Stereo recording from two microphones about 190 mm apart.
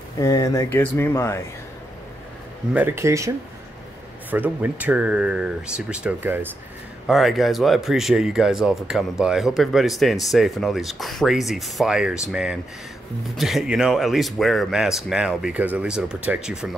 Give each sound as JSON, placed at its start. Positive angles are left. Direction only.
{"t": 0.2, "sound": "speech", "side_deg": 15}
{"t": 2.7, "sound": "speech", "side_deg": -10}